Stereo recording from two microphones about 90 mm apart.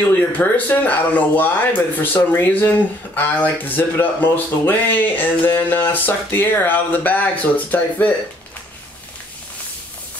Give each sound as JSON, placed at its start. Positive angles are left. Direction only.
{"t": 0.1, "sound": "speech", "side_deg": 20}